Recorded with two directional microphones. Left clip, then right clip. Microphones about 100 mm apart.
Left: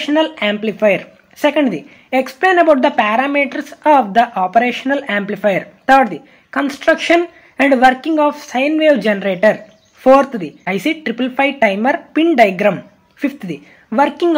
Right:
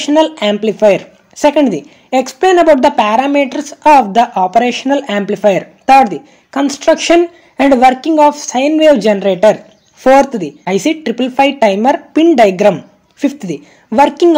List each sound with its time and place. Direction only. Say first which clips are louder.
0.0 s a woman's voice: right 4 dB; 30° right (ahead or behind)